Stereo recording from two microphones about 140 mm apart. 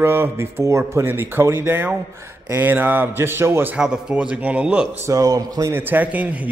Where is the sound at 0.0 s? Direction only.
15° right (ahead or behind).